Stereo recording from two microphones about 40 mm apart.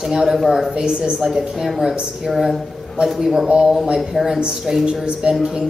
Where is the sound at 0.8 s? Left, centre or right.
Right.